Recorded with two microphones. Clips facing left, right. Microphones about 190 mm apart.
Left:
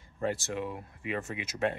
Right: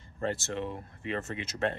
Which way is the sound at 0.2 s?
10° left (ahead or behind).